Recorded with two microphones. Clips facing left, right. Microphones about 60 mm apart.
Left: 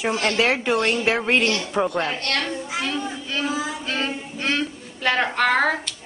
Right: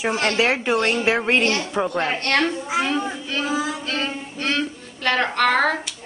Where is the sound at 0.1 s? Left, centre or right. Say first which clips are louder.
Right 1 dB; right.